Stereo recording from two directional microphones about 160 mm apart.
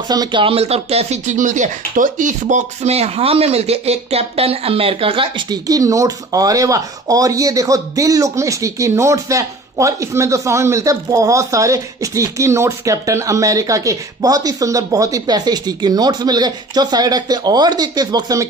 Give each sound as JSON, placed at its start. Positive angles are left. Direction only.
{"t": 0.1, "sound": "speech", "side_deg": -25}